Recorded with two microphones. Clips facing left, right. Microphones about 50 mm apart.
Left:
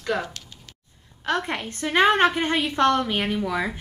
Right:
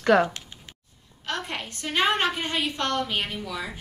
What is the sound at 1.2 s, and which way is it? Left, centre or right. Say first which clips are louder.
A woman's voice: left 6 dB; left.